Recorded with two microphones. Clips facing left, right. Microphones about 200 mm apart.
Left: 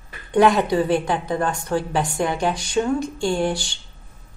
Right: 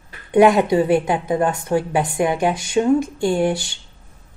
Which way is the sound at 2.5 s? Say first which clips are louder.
Right 3 dB; 20° right (ahead or behind).